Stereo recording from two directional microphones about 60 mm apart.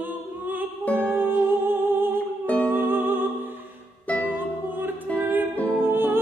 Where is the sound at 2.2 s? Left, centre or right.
Left.